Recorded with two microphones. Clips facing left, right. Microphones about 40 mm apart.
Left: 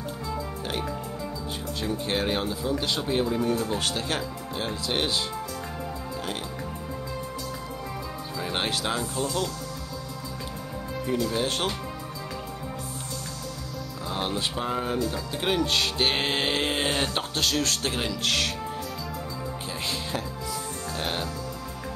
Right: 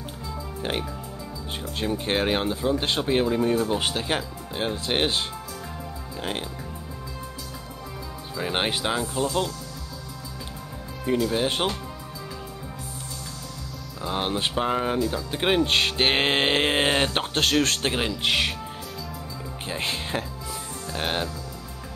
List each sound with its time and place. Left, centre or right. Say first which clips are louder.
1.8 s speech: right 3 dB; right
8.4 s speech: right 3 dB; right
11.1 s speech: right 4 dB; right
14.0 s speech: right 3 dB; right
15.3 s music: right 4 dB; right
17.9 s speech: right 3 dB; right
19.7 s music: right 4 dB; right
20.9 s music: right 4 dB; right